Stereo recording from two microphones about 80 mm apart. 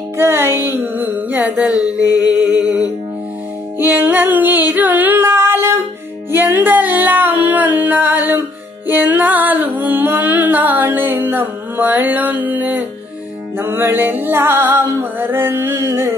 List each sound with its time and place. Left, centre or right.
0.2 s music: right
1.6 s mantra: centre
1.9 s mantra: left
3.7 s music: right